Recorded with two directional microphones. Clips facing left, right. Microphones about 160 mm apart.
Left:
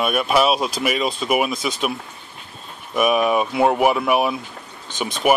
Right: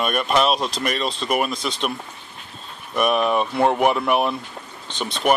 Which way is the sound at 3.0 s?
5° left (ahead or behind).